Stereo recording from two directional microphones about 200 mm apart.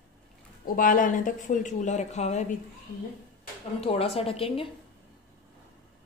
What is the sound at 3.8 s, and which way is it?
Speech, 30° left (ahead or behind).